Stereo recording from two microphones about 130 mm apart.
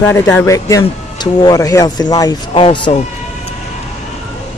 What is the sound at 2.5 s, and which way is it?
Speech, 40° left (ahead or behind).